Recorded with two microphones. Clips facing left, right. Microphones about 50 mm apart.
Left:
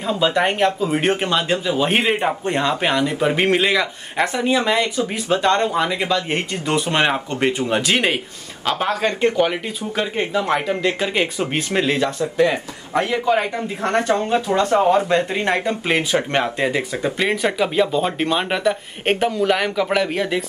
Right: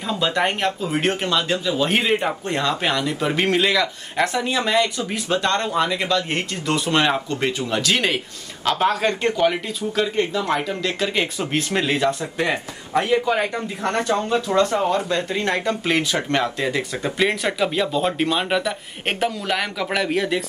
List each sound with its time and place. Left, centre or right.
0.0 s speech: centre
8.6 s speech: centre
13.2 s speech: centre
13.8 s speech: left
17.0 s speech: centre